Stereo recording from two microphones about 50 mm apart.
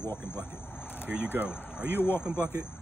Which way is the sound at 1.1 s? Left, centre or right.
Right.